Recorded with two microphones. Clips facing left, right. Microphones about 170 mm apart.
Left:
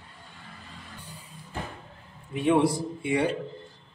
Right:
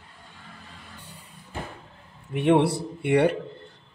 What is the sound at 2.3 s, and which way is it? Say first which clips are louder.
A man's voice: right 2 dB; 65° right (ahead or behind).